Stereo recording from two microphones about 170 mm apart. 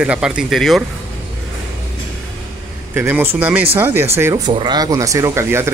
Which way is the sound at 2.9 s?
15° right (ahead or behind).